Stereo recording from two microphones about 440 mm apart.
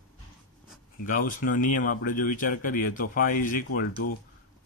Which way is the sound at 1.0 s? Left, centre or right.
Centre.